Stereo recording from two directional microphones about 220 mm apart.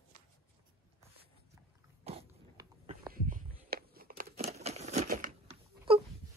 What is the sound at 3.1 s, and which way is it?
Crumpling, 40° right (ahead or behind).